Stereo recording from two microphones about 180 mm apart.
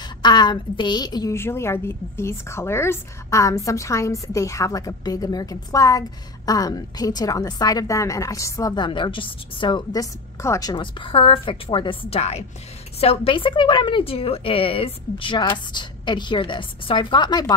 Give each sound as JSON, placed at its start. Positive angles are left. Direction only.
{"t": 0.2, "sound": "a woman's voice", "side_deg": 25}